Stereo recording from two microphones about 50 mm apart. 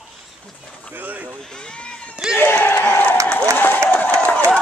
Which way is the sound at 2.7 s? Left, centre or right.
Left.